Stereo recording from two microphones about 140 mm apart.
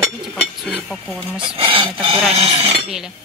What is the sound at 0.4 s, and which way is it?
Dishes, 5° left (ahead or behind).